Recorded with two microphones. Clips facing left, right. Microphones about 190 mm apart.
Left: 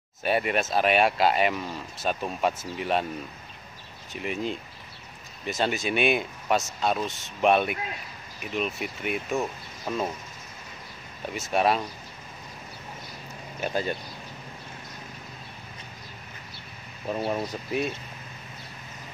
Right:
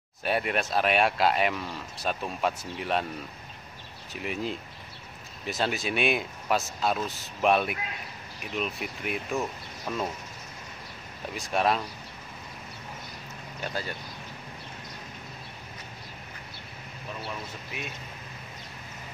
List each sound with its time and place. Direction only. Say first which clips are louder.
0.2 s speech: left 3 dB; centre (ahead or behind)
4.1 s speech: left 2 dB; centre (ahead or behind)
11.3 s speech: left 2 dB; 5° left (ahead or behind)
13.6 s speech: left 6 dB; 15° left (ahead or behind)
17.1 s speech: left 10 dB; 45° left (ahead or behind)